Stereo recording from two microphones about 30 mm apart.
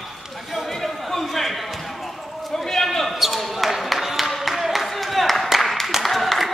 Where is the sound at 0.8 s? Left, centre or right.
Centre.